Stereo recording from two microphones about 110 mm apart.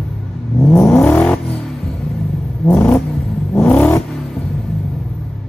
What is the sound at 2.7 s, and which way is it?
Vehicle, 10° left (ahead or behind).